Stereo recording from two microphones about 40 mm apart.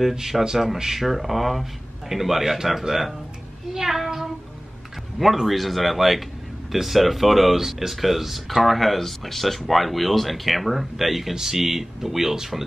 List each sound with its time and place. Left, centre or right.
0.1 s a man's voice: centre
3.7 s child singing: centre
5.2 s speech: centre